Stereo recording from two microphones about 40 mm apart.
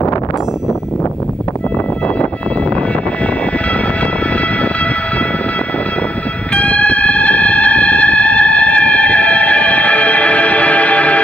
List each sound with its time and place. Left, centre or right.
6.5 s music: left